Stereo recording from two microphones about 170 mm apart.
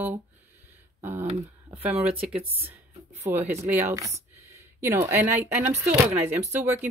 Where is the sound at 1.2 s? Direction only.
40° right (ahead or behind).